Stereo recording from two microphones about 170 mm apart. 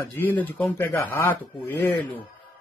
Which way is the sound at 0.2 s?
10° left (ahead or behind).